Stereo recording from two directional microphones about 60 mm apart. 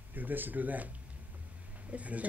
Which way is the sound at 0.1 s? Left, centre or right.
Right.